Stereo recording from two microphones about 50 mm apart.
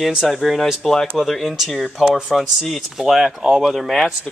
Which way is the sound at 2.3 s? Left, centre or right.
Centre.